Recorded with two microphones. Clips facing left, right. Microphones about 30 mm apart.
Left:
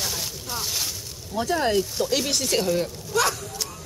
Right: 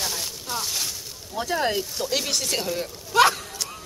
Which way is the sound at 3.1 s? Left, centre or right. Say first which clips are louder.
Right 5 dB; right.